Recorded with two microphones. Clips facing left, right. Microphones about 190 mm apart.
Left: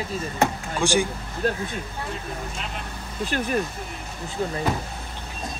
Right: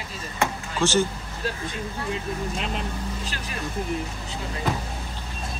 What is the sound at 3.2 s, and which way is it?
Speech, 55° left (ahead or behind).